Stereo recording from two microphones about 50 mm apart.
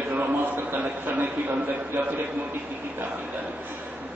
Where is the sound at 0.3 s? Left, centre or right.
Right.